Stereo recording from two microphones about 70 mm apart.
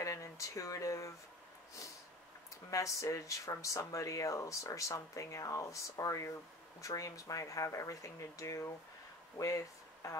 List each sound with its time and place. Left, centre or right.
0.0 s speech: left
2.7 s speech: left